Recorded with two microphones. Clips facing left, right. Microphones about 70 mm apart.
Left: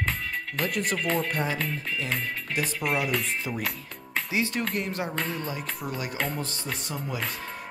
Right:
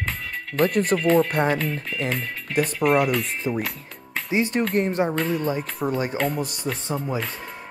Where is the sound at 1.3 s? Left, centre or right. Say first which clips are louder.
Right 7 dB; right.